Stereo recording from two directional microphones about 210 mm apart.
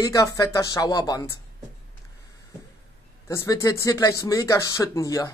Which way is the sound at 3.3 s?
15° left (ahead or behind).